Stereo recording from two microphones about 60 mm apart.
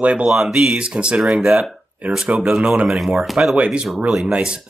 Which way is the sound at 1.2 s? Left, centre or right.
Centre.